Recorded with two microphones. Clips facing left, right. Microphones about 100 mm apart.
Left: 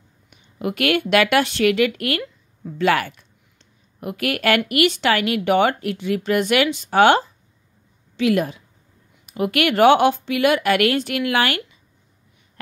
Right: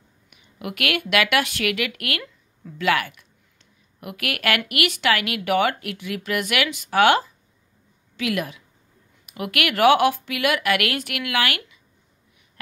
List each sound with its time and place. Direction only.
0.3 s speech: 30° left (ahead or behind)